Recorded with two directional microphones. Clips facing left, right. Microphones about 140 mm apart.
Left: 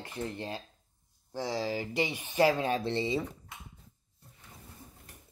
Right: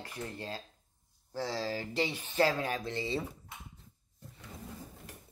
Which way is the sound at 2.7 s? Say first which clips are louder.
Left 5 dB; 25° left (ahead or behind).